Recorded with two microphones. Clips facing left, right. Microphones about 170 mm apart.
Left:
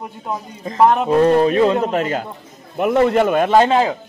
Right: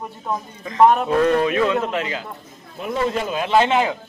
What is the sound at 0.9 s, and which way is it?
A man's voice, 25° left (ahead or behind).